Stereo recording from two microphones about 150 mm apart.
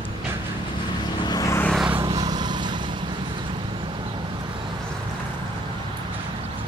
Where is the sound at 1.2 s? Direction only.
25° left (ahead or behind).